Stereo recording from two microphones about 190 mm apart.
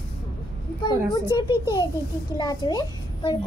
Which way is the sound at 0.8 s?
25° left (ahead or behind).